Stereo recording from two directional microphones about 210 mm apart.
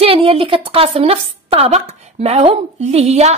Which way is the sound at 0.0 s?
25° right (ahead or behind).